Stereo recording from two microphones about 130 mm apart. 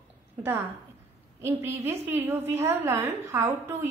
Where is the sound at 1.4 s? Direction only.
20° right (ahead or behind).